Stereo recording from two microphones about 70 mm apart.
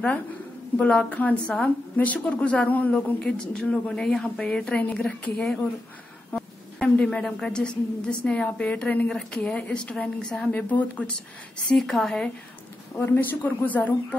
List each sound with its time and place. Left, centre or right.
0.7 s a woman's voice: centre
11.5 s a woman's voice: centre
13.0 s speech: left